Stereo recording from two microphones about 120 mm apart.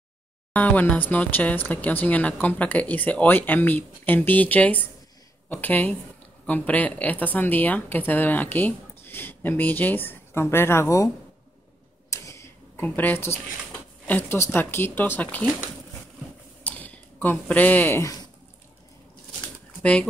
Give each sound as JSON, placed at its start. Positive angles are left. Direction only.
{"t": 0.5, "sound": "speech", "side_deg": 15}
{"t": 12.1, "sound": "mechanisms", "side_deg": 25}
{"t": 12.8, "sound": "speech", "side_deg": 15}
{"t": 13.7, "sound": "a sound", "side_deg": 15}
{"t": 14.5, "sound": "speech", "side_deg": 20}
{"t": 16.6, "sound": "a sound", "side_deg": 10}
{"t": 19.8, "sound": "speech", "side_deg": 10}